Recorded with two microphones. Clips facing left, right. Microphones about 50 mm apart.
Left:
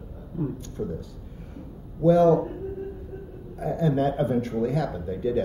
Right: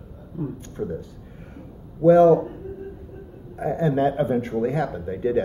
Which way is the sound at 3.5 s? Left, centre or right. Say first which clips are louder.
Right 2 dB; right.